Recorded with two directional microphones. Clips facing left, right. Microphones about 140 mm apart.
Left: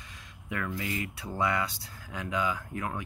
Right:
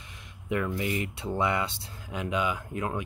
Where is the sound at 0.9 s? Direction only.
25° right (ahead or behind).